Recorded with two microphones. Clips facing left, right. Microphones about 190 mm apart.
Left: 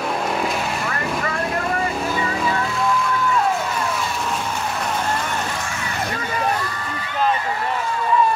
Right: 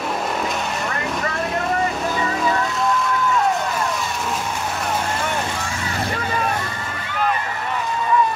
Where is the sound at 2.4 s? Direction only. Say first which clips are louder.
Right 1 dB; centre (ahead or behind).